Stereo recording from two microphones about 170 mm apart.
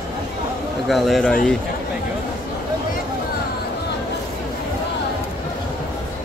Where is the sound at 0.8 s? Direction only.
Centre (ahead or behind).